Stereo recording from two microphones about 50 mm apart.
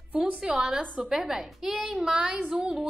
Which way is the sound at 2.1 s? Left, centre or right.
Centre.